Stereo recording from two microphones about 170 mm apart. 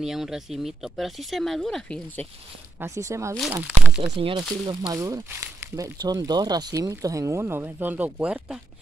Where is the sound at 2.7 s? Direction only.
15° right (ahead or behind).